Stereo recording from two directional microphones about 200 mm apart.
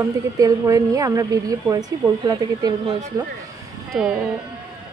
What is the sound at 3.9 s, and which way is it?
Speech, centre (ahead or behind).